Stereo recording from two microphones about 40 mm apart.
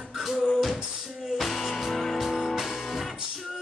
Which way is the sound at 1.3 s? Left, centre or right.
Centre.